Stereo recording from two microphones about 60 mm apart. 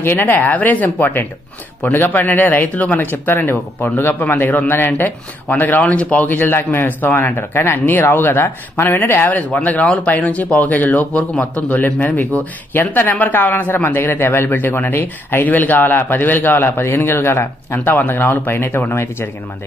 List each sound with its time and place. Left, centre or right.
0.0 s speech: left